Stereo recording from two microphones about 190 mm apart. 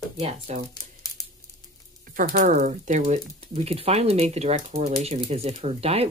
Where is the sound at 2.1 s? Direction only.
45° right (ahead or behind).